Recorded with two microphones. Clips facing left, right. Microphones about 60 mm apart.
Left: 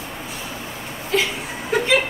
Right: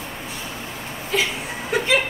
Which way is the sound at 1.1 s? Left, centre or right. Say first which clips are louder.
Left 2 dB; centre.